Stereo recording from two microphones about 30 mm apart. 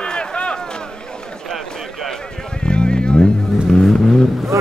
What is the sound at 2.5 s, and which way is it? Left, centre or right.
Vehicle, left.